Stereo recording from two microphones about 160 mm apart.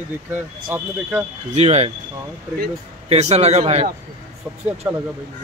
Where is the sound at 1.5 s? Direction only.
40° right (ahead or behind).